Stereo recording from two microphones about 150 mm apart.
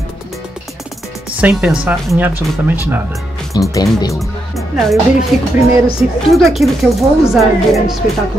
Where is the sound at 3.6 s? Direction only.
30° left (ahead or behind).